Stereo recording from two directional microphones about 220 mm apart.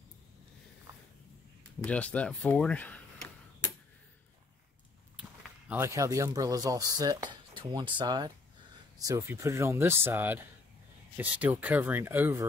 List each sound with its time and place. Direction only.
1.9 s speech: 5° left (ahead or behind)
5.7 s speech: 10° right (ahead or behind)